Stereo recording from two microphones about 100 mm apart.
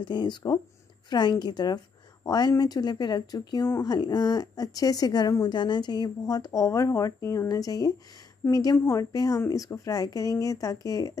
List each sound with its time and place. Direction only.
0.0 s a woman's voice: 50° left (ahead or behind)
8.7 s a woman's voice: 25° left (ahead or behind)
9.1 s a woman's voice: 40° left (ahead or behind)